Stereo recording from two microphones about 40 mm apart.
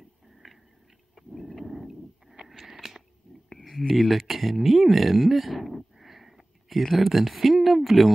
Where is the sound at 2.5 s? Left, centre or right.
Centre.